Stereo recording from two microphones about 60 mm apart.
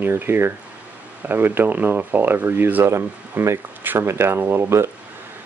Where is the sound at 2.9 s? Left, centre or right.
Right.